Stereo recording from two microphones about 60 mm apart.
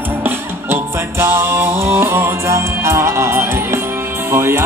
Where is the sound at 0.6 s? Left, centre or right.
Right.